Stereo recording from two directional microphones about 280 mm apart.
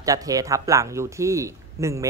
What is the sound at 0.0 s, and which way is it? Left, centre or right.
Speech, centre.